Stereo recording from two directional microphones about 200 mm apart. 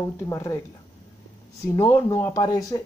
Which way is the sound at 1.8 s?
15° left (ahead or behind).